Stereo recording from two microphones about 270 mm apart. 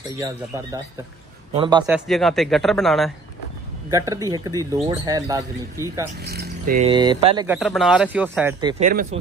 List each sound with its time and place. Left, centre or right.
1.5 s speech: centre
1.9 s speech: centre
3.9 s speech: centre
6.2 s speech: right
6.9 s speech: centre
7.4 s speech: centre
8.8 s speech: right